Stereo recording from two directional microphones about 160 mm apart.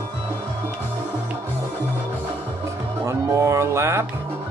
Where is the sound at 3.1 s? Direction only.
20° right (ahead or behind).